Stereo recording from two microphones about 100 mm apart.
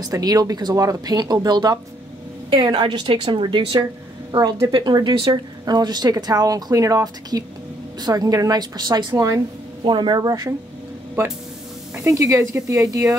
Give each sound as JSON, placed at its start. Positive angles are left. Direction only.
{"t": 0.0, "sound": "a woman's voice", "side_deg": -40}
{"t": 2.5, "sound": "a woman's voice", "side_deg": -55}
{"t": 9.8, "sound": "a woman's voice", "side_deg": -50}
{"t": 11.9, "sound": "a woman's voice", "side_deg": -30}